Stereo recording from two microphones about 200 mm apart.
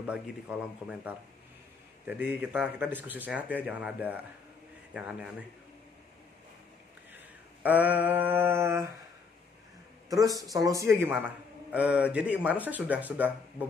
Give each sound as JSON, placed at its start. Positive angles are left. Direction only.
{"t": 0.0, "sound": "a man's voice", "side_deg": -5}
{"t": 7.6, "sound": "a man's voice", "side_deg": -10}
{"t": 10.0, "sound": "a man's voice", "side_deg": -15}